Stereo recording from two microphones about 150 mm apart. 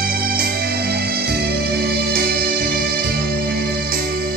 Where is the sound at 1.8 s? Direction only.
90° right.